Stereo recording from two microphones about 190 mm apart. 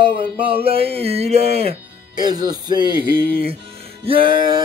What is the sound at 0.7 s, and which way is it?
Speech, 30° right (ahead or behind).